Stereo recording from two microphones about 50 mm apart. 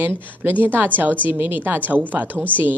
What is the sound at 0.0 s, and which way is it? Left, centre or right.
Speech, right.